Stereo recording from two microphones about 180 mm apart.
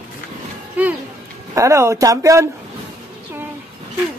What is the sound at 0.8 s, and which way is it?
Speech, 10° right (ahead or behind).